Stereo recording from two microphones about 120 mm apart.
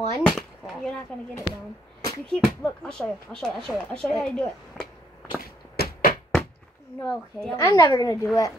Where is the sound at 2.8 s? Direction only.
5° left (ahead or behind).